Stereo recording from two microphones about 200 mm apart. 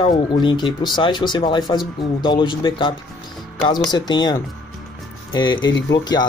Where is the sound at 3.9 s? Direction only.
20° left (ahead or behind).